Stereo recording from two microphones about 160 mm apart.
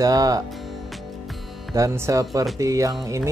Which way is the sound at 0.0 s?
20° right (ahead or behind).